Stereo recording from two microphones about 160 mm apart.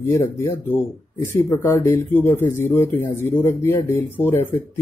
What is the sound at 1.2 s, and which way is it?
Speech, 15° left (ahead or behind).